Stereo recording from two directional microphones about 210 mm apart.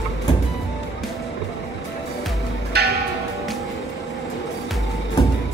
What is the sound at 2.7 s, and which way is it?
Music, 50° right (ahead or behind).